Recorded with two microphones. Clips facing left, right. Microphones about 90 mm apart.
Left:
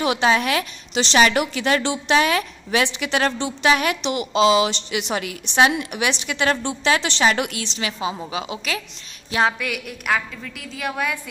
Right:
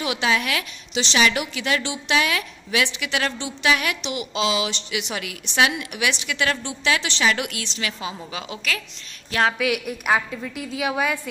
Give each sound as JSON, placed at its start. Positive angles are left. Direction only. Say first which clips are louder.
{"t": 0.0, "sound": "a woman's voice", "louder": "left 4 dB", "side_deg": 40}
{"t": 7.6, "sound": "a woman's voice", "louder": "left 4 dB", "side_deg": 20}
{"t": 9.6, "sound": "a woman's voice", "louder": "right 5 dB", "side_deg": -5}